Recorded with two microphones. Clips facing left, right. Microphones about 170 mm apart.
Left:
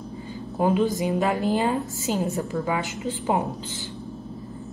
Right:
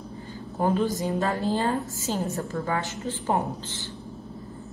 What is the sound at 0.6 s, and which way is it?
A woman's voice, 15° left (ahead or behind).